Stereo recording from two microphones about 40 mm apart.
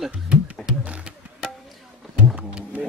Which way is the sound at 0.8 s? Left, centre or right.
Right.